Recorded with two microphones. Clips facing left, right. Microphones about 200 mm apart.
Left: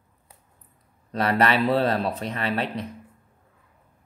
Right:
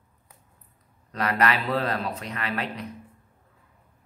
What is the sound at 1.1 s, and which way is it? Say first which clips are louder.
A man's voice: left 3 dB; 30° left (ahead or behind).